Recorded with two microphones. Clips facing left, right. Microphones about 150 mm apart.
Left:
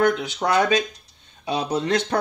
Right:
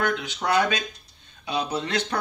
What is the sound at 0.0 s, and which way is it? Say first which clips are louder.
Speech: left 6 dB; 35° left (ahead or behind).